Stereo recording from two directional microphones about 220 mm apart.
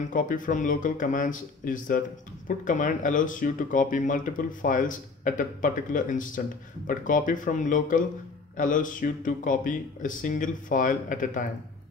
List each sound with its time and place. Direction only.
0.0 s speech: 35° left (ahead or behind)